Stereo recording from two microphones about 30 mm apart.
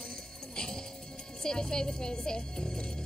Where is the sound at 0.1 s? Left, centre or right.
Left.